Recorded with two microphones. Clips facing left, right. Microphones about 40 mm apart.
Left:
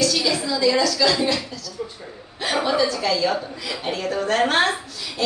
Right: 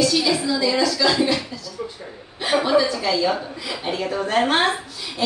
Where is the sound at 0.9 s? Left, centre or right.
Centre.